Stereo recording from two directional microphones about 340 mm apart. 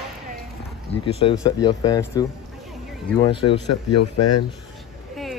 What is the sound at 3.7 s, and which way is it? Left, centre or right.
Speech, left.